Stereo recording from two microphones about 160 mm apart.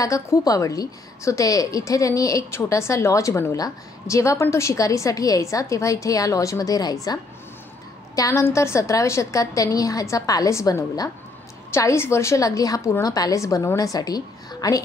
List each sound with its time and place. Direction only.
0.0 s a woman's voice: 20° left (ahead or behind)
8.2 s a woman's voice: 20° left (ahead or behind)